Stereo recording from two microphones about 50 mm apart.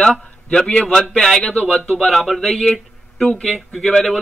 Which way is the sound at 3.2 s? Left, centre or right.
Centre.